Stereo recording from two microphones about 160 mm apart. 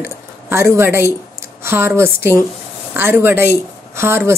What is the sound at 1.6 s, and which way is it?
A woman's voice, 15° right (ahead or behind).